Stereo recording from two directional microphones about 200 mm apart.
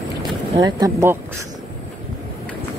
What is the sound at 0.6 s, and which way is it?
Speech, 20° right (ahead or behind).